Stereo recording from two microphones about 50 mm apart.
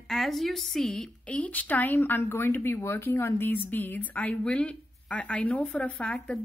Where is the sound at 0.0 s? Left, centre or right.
Centre.